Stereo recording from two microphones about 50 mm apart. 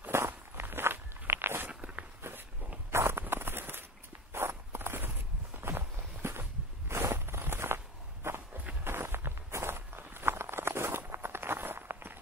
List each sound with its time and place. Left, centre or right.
0.3 s walk: right
1.7 s walk: right
2.9 s a sound: right
4.3 s walk: right